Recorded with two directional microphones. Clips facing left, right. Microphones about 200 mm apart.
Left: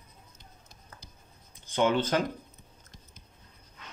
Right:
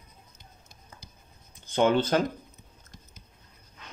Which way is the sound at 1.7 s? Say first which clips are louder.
Right 3 dB; 30° right (ahead or behind).